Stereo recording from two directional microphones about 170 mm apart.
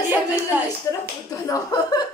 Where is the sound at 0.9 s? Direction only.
15° left (ahead or behind).